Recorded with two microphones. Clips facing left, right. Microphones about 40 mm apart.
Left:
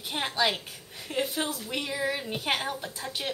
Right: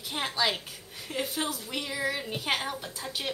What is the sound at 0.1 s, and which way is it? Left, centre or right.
A woman's voice, centre.